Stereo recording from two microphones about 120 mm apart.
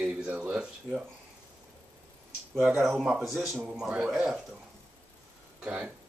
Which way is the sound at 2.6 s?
10° right (ahead or behind).